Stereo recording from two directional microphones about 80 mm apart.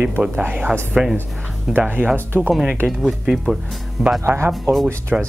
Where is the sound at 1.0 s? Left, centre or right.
Centre.